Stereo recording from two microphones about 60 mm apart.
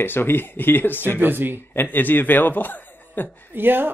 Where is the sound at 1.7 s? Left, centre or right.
Left.